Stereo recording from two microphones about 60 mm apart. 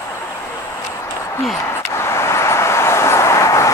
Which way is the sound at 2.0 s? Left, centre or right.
Left.